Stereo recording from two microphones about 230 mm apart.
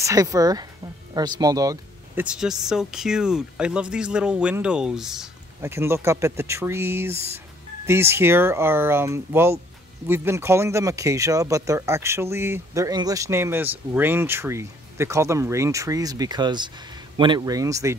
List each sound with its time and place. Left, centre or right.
0.0 s speech: centre